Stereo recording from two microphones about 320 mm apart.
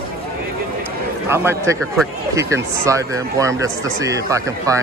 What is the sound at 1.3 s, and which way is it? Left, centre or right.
Speech, centre.